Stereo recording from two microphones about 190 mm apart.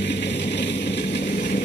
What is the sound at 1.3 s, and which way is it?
Vehicle, 45° left (ahead or behind).